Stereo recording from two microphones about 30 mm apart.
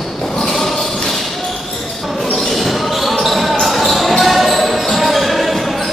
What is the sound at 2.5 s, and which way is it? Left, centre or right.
Basketball bounce, centre.